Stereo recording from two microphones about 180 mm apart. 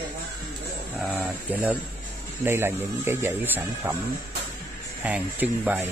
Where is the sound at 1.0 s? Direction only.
Centre (ahead or behind).